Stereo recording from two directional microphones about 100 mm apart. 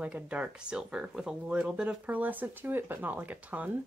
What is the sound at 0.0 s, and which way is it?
Speech, 10° right (ahead or behind).